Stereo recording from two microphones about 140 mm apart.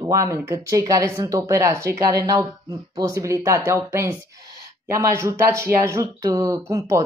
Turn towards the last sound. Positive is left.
turn(degrees=-20)  # may be behind; listen again after turning